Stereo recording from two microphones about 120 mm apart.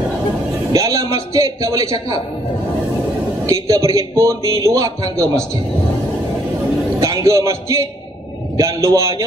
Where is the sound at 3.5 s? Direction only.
30° right (ahead or behind).